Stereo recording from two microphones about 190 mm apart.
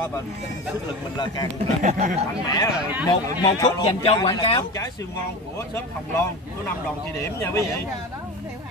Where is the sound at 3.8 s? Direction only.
30° left (ahead or behind).